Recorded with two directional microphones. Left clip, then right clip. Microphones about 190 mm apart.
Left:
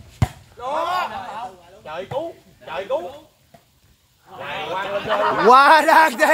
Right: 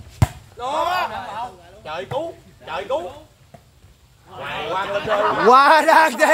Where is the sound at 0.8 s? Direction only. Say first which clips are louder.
Right 1 dB; 25° right (ahead or behind).